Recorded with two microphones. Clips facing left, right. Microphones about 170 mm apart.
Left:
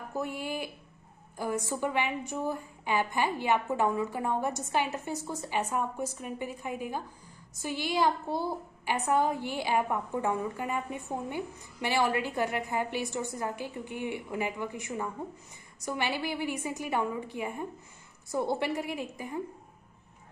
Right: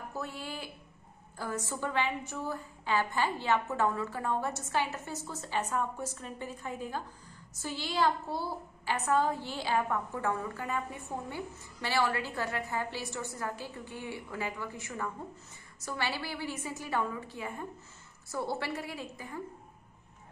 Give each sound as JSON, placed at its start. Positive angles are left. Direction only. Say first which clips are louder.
{"t": 0.1, "sound": "a woman's voice", "louder": "left 7 dB", "side_deg": 15}